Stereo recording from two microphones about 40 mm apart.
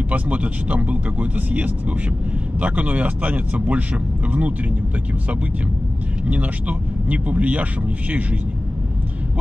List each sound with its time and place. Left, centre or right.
0.1 s speech: right
6.2 s speech: right